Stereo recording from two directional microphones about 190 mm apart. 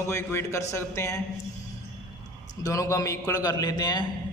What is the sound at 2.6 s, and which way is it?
A man's voice, 15° left (ahead or behind).